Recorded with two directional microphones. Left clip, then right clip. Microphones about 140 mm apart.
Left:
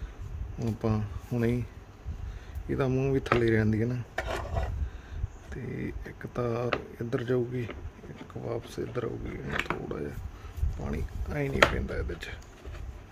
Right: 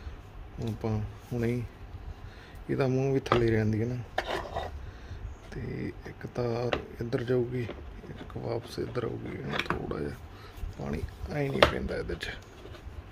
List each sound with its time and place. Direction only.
0.7 s speech: 45° left (ahead or behind)
2.9 s speech: 20° left (ahead or behind)
3.6 s speech: 30° left (ahead or behind)
4.1 s rub: 5° left (ahead or behind)
5.5 s speech: 15° left (ahead or behind)
11.9 s speech: 15° right (ahead or behind)